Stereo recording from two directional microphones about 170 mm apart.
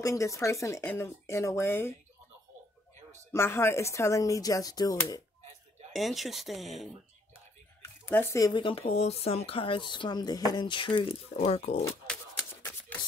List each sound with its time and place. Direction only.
0.0 s speech: 20° left (ahead or behind)
3.3 s speech: 15° left (ahead or behind)
5.9 s speech: centre (ahead or behind)
7.8 s speech: 15° left (ahead or behind); by 11.8 s 40° left (ahead or behind)